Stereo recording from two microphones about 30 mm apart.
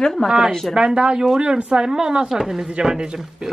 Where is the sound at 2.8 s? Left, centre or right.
Right.